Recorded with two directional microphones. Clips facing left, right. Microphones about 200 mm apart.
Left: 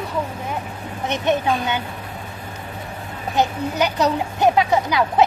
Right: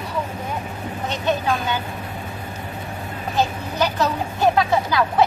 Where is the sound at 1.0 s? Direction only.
20° left (ahead or behind).